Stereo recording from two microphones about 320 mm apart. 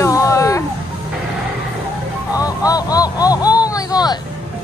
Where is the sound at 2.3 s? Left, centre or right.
Centre.